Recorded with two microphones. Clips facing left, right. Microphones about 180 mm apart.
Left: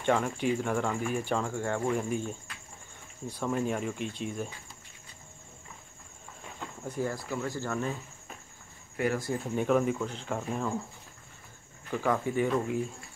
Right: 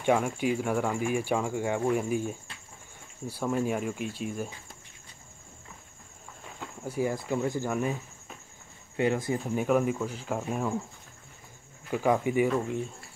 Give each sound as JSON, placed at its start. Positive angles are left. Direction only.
{"t": 0.0, "sound": "speech", "side_deg": -10}
{"t": 6.6, "sound": "speech", "side_deg": -10}
{"t": 9.6, "sound": "speech", "side_deg": -5}
{"t": 11.9, "sound": "speech", "side_deg": -15}
{"t": 12.4, "sound": "speech", "side_deg": 0}